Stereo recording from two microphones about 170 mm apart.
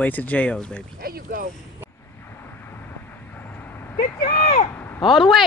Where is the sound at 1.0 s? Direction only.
60° right (ahead or behind).